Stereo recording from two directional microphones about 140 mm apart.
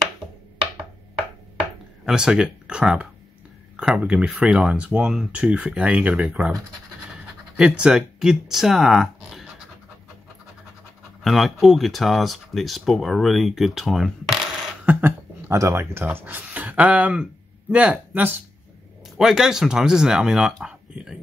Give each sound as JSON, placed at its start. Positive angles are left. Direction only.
{"t": 2.0, "sound": "speech", "side_deg": -5}
{"t": 7.5, "sound": "speech", "side_deg": -5}
{"t": 11.2, "sound": "speech", "side_deg": 0}
{"t": 14.9, "sound": "speech", "side_deg": -15}